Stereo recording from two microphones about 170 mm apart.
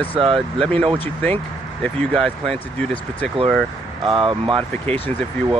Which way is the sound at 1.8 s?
5° left (ahead or behind).